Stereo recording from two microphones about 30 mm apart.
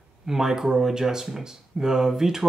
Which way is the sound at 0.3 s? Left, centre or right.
Centre.